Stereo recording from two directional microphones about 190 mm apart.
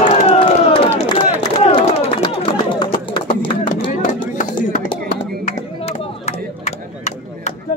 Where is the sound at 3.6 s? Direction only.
45° left (ahead or behind).